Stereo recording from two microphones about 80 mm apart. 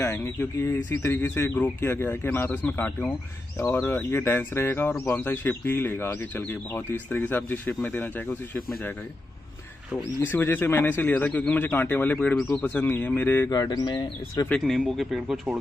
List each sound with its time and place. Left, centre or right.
0.1 s speech: left
10.2 s speech: left
13.5 s speech: left
14.6 s speech: centre